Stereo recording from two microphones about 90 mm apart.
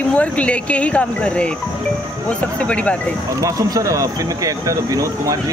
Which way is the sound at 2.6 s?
15° left (ahead or behind).